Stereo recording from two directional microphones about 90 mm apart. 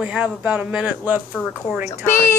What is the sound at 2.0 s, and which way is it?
Speech, 30° left (ahead or behind).